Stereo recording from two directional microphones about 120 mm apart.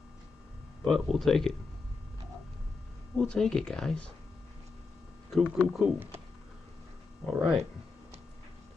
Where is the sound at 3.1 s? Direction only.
5° left (ahead or behind).